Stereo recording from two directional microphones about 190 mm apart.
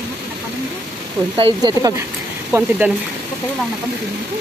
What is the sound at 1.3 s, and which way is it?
Speech, 25° right (ahead or behind).